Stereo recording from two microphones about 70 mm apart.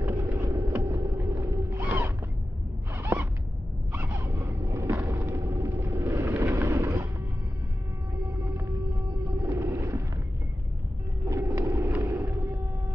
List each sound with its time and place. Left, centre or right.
0.0 s boat: right
1.8 s music: right
2.9 s zipper: right
3.9 s gasp: right
4.6 s vehicle: right
5.5 s vehicle: right
8.5 s music: right
9.4 s vehicle: right
11.2 s vehicle: right
12.0 s a sound: right